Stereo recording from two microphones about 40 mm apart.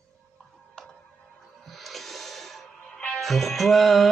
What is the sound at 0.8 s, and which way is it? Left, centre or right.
Music, left.